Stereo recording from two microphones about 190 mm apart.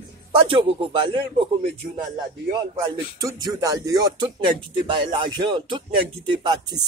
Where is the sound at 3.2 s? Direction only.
20° right (ahead or behind).